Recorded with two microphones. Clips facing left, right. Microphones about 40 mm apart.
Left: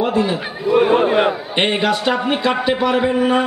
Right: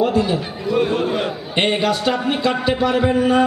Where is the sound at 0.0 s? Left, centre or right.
Left.